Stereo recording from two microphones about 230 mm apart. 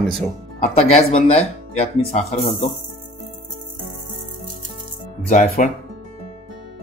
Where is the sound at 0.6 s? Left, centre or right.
Left.